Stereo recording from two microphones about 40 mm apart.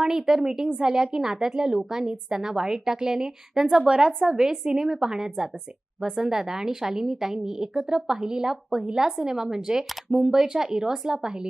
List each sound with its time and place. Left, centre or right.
0.0 s a woman's voice: centre
0.4 s a woman's voice: right
4.2 s a woman's voice: centre